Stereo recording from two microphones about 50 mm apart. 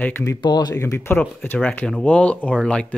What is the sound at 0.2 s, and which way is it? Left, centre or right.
Speech, left.